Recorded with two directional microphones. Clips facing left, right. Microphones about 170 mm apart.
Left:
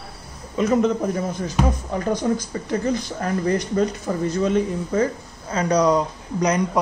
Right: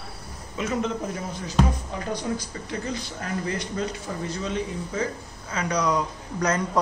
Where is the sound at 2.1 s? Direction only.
45° left (ahead or behind).